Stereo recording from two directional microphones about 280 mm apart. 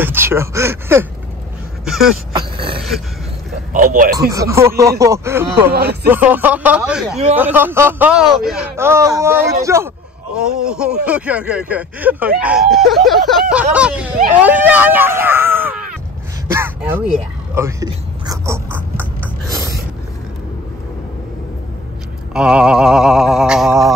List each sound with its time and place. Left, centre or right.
0.0 s speech: centre
2.3 s speech: centre
3.7 s a man's voice: right
4.3 s speech: centre
5.7 s speech: right
6.0 s speech: centre
16.5 s a sound: centre
22.3 s speech: centre